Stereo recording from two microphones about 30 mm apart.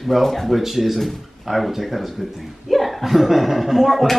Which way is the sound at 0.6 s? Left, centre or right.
Centre.